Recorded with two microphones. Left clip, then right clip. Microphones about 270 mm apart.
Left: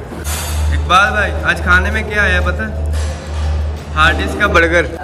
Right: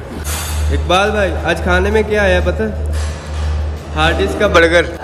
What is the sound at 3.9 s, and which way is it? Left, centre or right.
A man's voice, centre.